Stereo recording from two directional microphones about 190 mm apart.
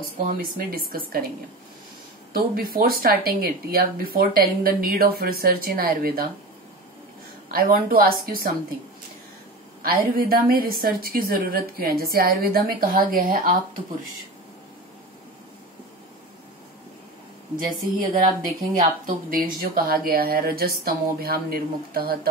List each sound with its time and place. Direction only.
0.2 s speech: 45° right (ahead or behind)
2.3 s speech: 50° right (ahead or behind)
7.5 s speech: 50° right (ahead or behind)
9.8 s speech: 50° right (ahead or behind)
18.4 s speech: 45° right (ahead or behind)